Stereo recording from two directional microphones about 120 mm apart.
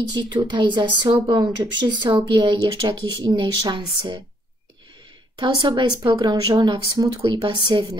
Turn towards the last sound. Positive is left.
turn(degrees=-40)  # may be behind; listen again after turning